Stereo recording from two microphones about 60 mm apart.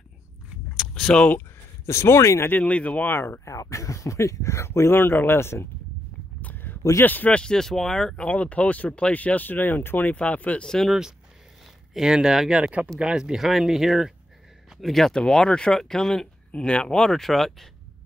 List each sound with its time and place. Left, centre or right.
0.9 s speech: centre
1.9 s speech: left
2.5 s speech: left
3.1 s speech: left
3.4 s speech: left
6.4 s a sound: left
7.0 s speech: left
7.3 s speech: centre
8.3 s speech: left
10.6 s speech: centre
10.9 s speech: centre